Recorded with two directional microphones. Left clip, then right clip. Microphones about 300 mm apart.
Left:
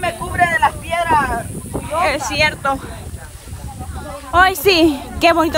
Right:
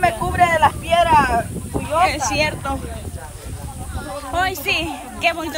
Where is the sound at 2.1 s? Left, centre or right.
Centre.